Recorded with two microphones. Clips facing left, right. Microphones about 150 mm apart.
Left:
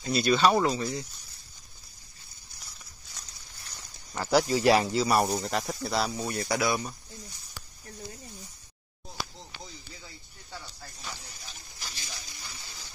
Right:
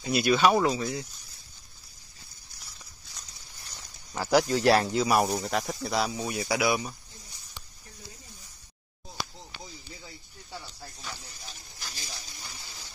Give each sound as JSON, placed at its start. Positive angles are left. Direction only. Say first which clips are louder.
{"t": 0.1, "sound": "speech", "louder": "right 1 dB", "side_deg": -5}
{"t": 4.1, "sound": "speech", "louder": "right 1 dB", "side_deg": 0}
{"t": 4.5, "sound": "speech", "louder": "even", "side_deg": 10}
{"t": 11.9, "sound": "a sound", "louder": "right 1 dB", "side_deg": -40}